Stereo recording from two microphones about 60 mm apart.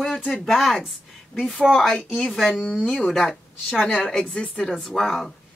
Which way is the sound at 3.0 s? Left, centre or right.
Centre.